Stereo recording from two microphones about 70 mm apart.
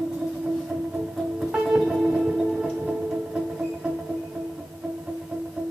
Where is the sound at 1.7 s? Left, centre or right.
Centre.